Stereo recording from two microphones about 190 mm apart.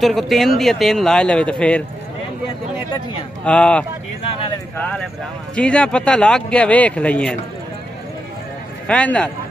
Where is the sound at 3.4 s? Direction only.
5° left (ahead or behind).